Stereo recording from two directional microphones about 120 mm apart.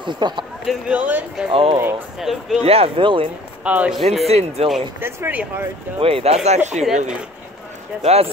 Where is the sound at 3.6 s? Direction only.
10° right (ahead or behind).